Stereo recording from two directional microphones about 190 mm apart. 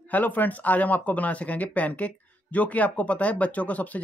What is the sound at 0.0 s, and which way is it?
Speech, 10° left (ahead or behind).